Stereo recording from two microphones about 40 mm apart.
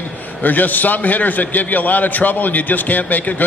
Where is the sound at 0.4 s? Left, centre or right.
Left.